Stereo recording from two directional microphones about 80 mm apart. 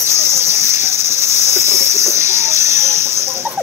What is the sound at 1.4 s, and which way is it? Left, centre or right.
Cricket, right.